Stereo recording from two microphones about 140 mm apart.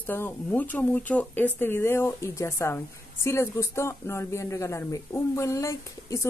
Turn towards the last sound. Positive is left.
turn(degrees=20)  # may be behind; listen again after turning